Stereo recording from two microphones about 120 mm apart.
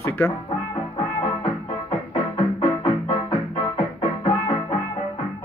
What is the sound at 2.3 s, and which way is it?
Music, 45° left (ahead or behind).